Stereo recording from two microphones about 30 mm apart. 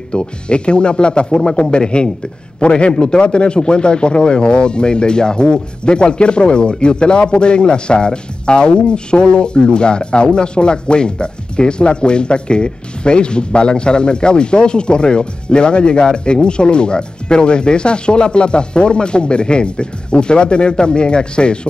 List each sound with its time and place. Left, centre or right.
0.1 s speech: left